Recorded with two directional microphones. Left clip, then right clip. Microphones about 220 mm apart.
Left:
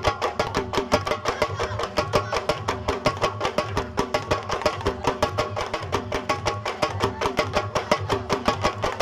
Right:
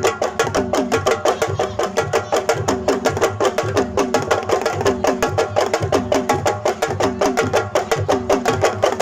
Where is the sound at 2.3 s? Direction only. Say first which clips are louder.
Right 7 dB; 50° right (ahead or behind).